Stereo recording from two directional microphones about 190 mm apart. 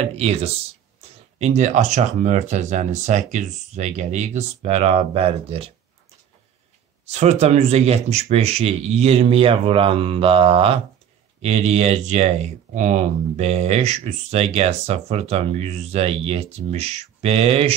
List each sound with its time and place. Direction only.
0.0 s speech: 35° right (ahead or behind)
7.1 s speech: 35° right (ahead or behind)